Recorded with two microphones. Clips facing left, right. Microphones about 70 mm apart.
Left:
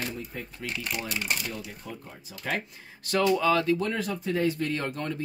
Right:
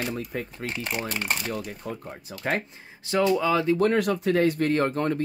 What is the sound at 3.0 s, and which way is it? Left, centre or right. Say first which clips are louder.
Speech: right 2 dB; centre.